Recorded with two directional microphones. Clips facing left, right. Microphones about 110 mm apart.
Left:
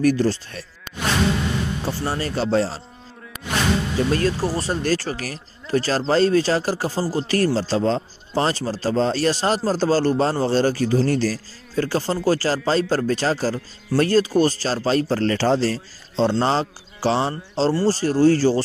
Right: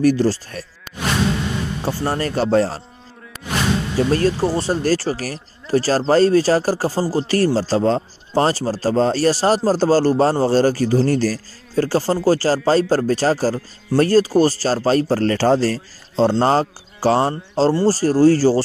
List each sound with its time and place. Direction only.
0.0 s speech: 30° right (ahead or behind)
0.9 s a sound: centre (ahead or behind)
1.9 s a man's voice: 45° right (ahead or behind)
3.3 s music: 5° left (ahead or behind)
4.1 s a man's voice: 30° right (ahead or behind)